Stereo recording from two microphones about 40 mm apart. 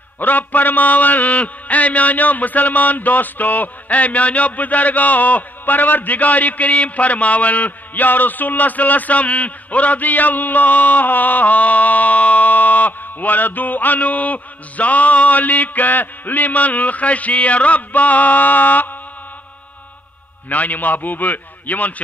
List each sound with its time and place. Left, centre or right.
0.2 s a man's voice: left
20.4 s a man's voice: left